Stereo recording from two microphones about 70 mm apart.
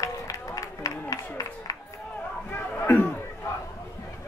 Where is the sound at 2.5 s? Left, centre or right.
Left.